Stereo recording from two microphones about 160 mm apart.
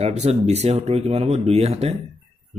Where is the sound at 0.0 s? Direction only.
40° right (ahead or behind).